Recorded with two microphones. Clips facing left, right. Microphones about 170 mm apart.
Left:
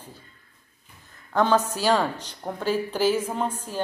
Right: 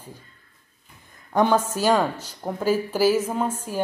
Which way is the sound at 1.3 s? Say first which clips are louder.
Right 1 dB; 15° right (ahead or behind).